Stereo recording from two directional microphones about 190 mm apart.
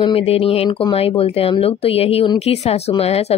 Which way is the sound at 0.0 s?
30° left (ahead or behind).